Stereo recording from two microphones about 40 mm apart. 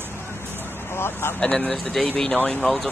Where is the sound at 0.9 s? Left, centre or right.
Left.